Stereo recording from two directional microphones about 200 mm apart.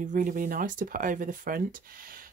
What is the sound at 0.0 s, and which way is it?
Speech, 40° right (ahead or behind).